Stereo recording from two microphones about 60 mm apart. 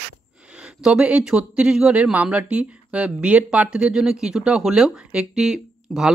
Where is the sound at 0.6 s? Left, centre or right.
Centre.